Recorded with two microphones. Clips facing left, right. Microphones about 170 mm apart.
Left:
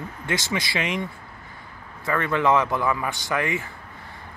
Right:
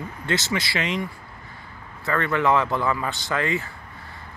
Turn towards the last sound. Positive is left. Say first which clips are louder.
# right 1 dB
turn(degrees=15)  # may be behind; listen again after turning